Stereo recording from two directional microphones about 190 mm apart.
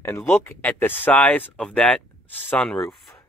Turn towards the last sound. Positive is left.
turn(degrees=0)  # may be behind; listen again after turning